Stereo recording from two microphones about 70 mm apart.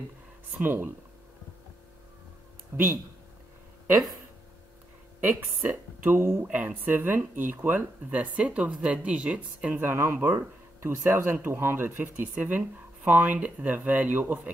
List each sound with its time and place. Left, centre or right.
0.6 s speech: right
2.7 s speech: right
5.2 s speech: right
6.5 s speech: right
9.8 s speech: right